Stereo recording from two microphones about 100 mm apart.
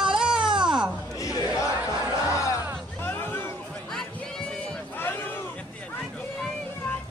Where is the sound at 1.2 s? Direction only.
35° left (ahead or behind).